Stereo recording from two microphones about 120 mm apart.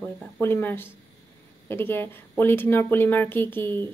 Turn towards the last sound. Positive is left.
turn(degrees=15)  # may be behind; listen again after turning